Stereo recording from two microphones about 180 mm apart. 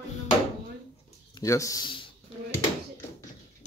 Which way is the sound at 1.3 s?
15° left (ahead or behind).